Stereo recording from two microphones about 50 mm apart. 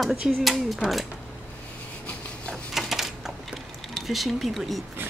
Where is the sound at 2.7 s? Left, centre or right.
Centre.